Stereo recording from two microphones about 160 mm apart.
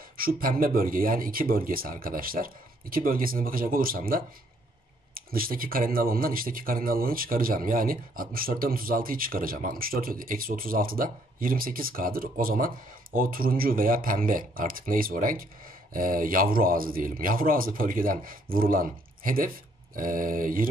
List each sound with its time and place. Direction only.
0.2 s speech: 65° right (ahead or behind)